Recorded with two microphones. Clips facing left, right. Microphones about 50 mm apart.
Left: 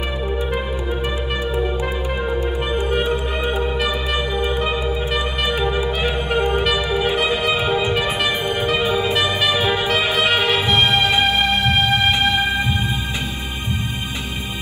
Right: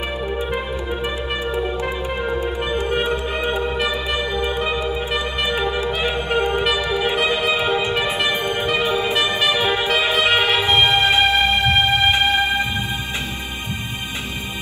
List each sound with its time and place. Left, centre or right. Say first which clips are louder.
5.4 s music: even; centre
7.5 s music: even; centre
8.3 s music: even; right
9.6 s music: even; centre
10.6 s music: right 1 dB; right